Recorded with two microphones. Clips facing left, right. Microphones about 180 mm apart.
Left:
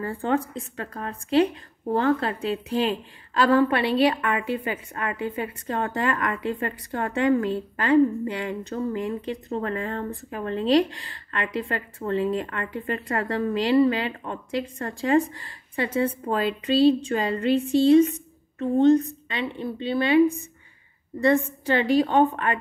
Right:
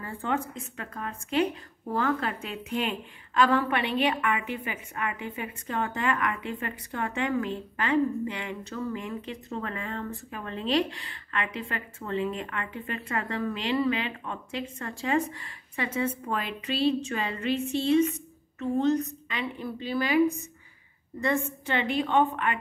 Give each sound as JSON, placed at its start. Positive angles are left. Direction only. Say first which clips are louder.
{"t": 0.0, "sound": "a woman's voice", "louder": "left 6 dB", "side_deg": 35}